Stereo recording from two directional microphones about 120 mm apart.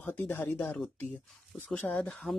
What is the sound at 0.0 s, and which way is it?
Speech, 15° left (ahead or behind).